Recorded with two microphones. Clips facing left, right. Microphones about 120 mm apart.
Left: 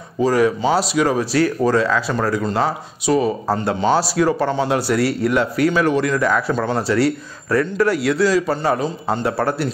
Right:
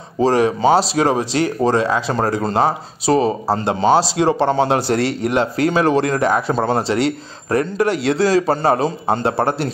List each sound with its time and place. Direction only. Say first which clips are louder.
0.2 s speech: right 2 dB; 30° right (ahead or behind)
2.1 s a man's voice: right 2 dB; 35° right (ahead or behind)
6.5 s a man's voice: right 2 dB; 40° right (ahead or behind)
6.8 s a man's voice: left 1 dB; 25° right (ahead or behind)
9.2 s speech: even; 25° right (ahead or behind)